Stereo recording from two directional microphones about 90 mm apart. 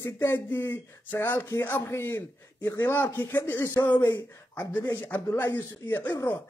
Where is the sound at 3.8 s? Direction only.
35° left (ahead or behind).